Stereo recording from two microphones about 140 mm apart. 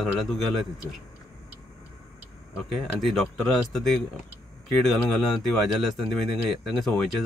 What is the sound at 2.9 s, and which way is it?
Speech, centre (ahead or behind).